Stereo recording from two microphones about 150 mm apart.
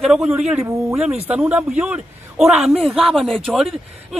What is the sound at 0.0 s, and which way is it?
A man's voice, centre (ahead or behind).